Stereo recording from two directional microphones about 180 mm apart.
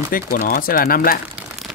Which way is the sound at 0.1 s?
50° left (ahead or behind).